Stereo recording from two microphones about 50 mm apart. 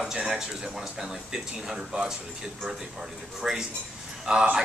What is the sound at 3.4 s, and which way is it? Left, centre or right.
Speech, centre.